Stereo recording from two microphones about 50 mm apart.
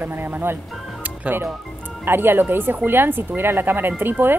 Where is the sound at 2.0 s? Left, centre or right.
Right.